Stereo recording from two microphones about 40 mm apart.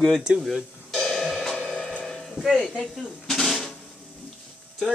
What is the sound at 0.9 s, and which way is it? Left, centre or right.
Cymbal, centre.